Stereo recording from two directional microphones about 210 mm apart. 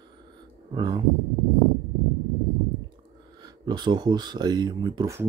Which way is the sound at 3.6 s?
20° right (ahead or behind).